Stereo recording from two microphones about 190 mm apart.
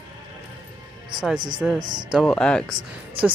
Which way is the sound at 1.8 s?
25° right (ahead or behind).